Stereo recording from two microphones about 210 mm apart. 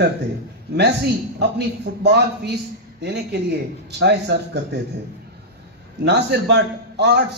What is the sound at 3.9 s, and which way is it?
Speech, 55° right (ahead or behind).